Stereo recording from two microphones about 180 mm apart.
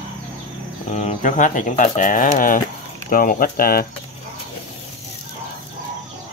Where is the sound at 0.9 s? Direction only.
40° left (ahead or behind).